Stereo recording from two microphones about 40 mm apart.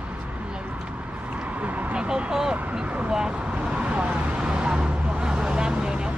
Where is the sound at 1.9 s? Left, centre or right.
Right.